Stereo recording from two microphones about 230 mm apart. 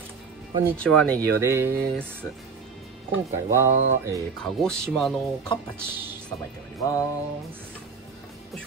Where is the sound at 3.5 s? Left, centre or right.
Centre.